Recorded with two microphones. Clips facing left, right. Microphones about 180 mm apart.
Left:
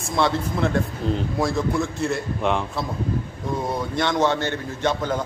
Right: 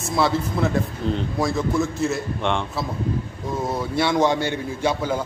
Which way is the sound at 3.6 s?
5° right (ahead or behind).